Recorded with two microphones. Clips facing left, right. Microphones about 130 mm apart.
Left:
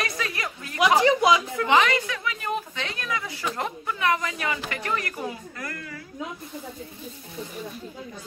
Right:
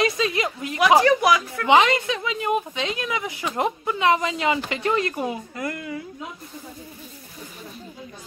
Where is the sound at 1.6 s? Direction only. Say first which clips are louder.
Right 5 dB; 20° right (ahead or behind).